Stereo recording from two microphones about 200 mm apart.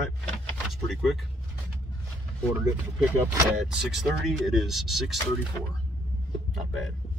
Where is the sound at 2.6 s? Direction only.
10° right (ahead or behind).